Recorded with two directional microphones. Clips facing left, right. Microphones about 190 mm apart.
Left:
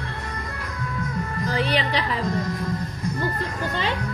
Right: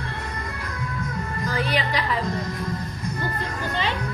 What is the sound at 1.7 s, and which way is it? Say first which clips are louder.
Speech: left 1 dB; 35° left (ahead or behind).